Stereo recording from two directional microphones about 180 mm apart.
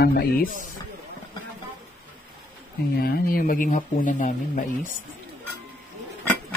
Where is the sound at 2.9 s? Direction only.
60° left (ahead or behind).